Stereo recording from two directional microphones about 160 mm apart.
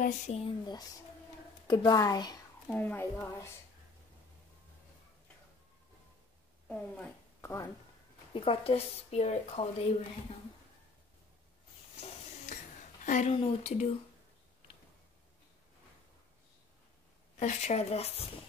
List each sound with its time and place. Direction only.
0.3 s a woman's voice: 35° left (ahead or behind)
2.7 s speech: 10° left (ahead or behind)
6.7 s a woman's voice: 10° left (ahead or behind)
8.3 s speech: 35° left (ahead or behind)
13.0 s a sound: 50° left (ahead or behind)
13.3 s speech: 40° left (ahead or behind)
17.4 s speech: 45° left (ahead or behind)